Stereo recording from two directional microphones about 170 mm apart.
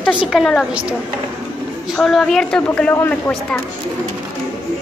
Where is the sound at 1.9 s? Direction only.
Centre (ahead or behind).